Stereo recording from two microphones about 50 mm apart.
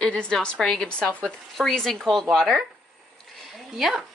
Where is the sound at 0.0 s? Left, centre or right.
Centre.